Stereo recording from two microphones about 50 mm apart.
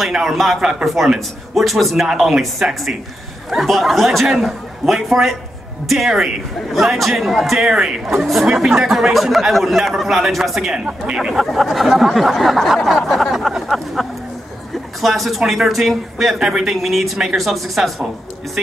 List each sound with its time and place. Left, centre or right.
0.0 s speech: centre
0.6 s speech: centre
0.8 s speech: centre